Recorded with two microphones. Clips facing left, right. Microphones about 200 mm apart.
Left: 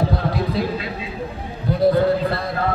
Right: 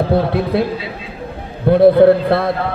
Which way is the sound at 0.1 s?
60° right (ahead or behind).